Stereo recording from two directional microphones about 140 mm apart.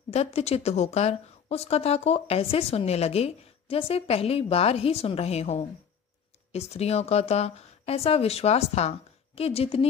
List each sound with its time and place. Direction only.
0.1 s speech: 45° left (ahead or behind)